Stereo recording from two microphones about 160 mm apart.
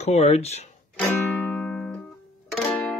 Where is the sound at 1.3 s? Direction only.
10° left (ahead or behind).